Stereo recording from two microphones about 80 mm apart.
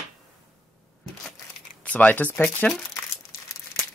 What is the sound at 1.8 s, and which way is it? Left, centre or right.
Speech, centre.